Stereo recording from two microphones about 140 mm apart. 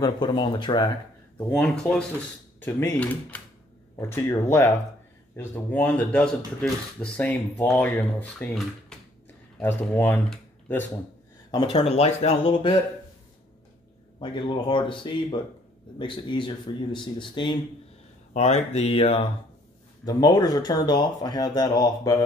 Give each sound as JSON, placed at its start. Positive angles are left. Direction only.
{"t": 0.0, "sound": "speech", "side_deg": 35}
{"t": 1.5, "sound": "speech", "side_deg": 5}
{"t": 9.6, "sound": "speech", "side_deg": 10}
{"t": 11.5, "sound": "speech", "side_deg": 40}
{"t": 14.2, "sound": "speech", "side_deg": 35}
{"t": 18.3, "sound": "speech", "side_deg": 50}
{"t": 20.1, "sound": "speech", "side_deg": 25}